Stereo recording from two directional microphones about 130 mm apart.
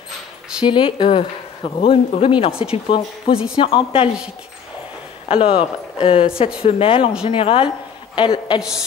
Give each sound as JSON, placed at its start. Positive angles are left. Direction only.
{"t": 0.7, "sound": "speech", "side_deg": 40}
{"t": 5.3, "sound": "a woman's voice", "side_deg": 45}
{"t": 8.5, "sound": "a woman's voice", "side_deg": -5}